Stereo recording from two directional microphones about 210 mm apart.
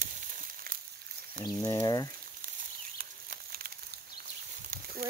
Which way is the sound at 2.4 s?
40° right (ahead or behind).